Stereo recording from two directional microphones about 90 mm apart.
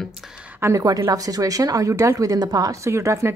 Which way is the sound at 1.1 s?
40° right (ahead or behind).